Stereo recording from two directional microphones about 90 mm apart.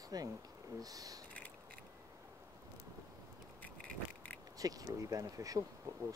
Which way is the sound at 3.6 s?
15° left (ahead or behind).